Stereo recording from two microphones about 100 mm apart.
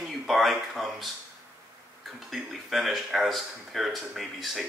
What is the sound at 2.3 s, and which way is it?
Speech, centre (ahead or behind).